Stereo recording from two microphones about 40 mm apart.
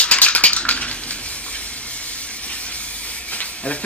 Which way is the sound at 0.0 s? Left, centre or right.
Left.